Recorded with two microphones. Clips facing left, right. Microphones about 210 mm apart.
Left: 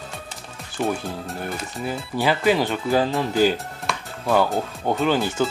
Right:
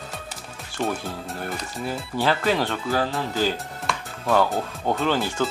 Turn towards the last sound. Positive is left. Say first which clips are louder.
# left 3 dB
turn(degrees=10)  # may be behind; listen again after turning